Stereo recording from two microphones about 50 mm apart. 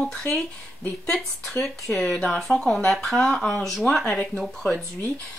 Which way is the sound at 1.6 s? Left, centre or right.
Centre.